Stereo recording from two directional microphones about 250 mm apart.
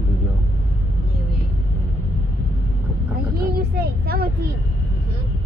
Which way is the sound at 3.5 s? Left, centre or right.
Right.